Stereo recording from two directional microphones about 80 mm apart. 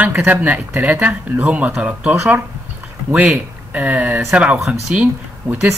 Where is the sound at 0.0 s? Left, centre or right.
Right.